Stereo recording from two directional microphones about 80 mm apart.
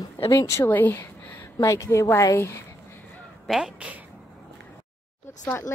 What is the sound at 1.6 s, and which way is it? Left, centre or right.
Speech, left.